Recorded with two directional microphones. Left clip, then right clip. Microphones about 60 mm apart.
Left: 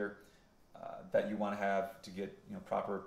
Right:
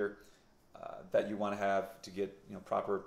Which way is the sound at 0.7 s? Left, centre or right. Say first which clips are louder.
Right 1 dB; right.